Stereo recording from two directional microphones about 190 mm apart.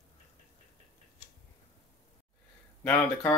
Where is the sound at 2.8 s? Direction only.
10° left (ahead or behind).